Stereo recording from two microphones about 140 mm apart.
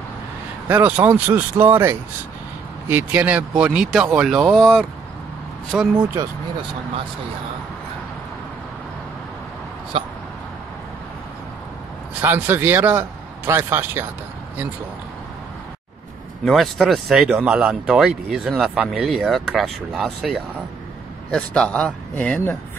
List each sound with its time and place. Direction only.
0.7 s speech: 15° right (ahead or behind)
9.9 s a sound: 40° right (ahead or behind)
12.2 s speech: 15° right (ahead or behind)
16.4 s speech: centre (ahead or behind)